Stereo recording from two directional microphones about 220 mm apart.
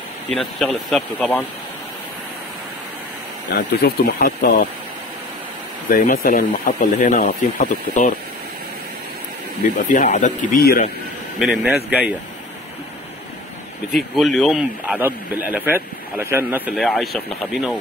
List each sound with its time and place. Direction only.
0.3 s speech: centre (ahead or behind)
3.4 s speech: 55° left (ahead or behind)
4.0 s speech: 40° left (ahead or behind)
5.9 s speech: 40° left (ahead or behind)
9.6 s speech: 35° left (ahead or behind)
11.3 s speech: centre (ahead or behind)
13.9 s speech: centre (ahead or behind)